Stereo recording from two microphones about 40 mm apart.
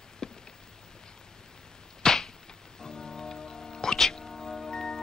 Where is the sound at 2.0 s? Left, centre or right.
Centre.